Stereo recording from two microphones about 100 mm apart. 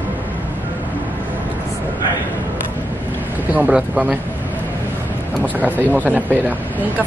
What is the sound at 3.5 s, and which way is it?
Speech, 10° right (ahead or behind).